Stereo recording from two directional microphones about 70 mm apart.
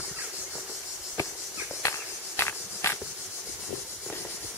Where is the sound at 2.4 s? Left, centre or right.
Left.